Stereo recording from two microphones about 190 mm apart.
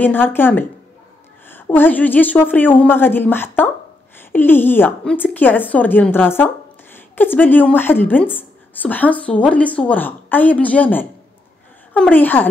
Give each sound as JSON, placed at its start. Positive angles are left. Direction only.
{"t": 0.0, "sound": "a woman's voice", "side_deg": 10}